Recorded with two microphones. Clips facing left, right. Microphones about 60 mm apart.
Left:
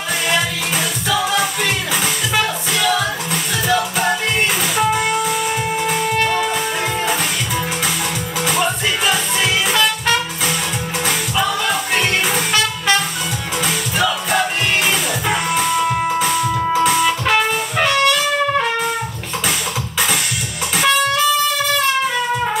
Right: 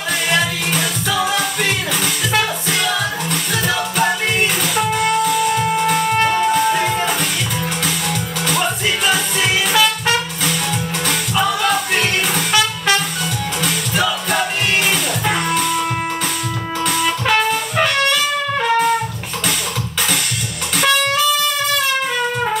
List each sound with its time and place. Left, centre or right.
0.3 s music: centre
8.5 s music: centre
11.9 s music: centre
13.6 s music: centre
16.7 s music: centre